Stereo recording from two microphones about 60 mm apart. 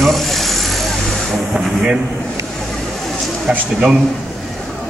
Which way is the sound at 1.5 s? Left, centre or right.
Centre.